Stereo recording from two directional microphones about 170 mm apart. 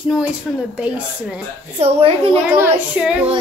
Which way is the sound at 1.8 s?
35° right (ahead or behind).